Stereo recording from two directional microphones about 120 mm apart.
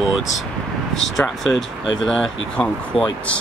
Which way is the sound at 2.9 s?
50° left (ahead or behind).